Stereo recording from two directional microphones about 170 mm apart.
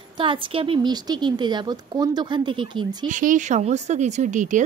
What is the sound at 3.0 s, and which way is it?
Speech, 50° right (ahead or behind).